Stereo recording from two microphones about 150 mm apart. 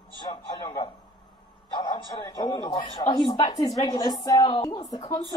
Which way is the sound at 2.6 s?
25° left (ahead or behind).